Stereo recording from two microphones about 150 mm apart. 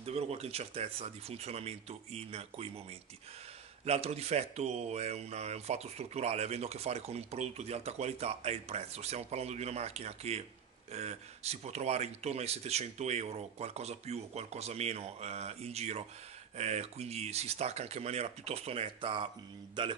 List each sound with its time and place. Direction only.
0.0 s speech: 45° right (ahead or behind)